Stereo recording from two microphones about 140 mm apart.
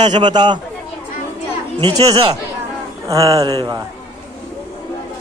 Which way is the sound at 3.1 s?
25° right (ahead or behind).